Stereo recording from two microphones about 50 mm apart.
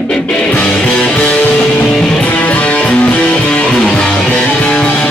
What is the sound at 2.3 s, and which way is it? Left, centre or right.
Music, left.